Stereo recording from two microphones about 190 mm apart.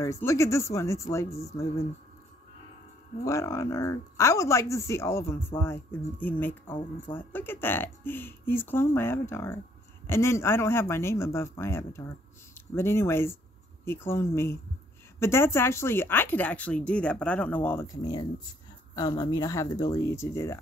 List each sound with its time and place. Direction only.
0.0 s speech: 15° left (ahead or behind)
3.3 s speech: 15° left (ahead or behind)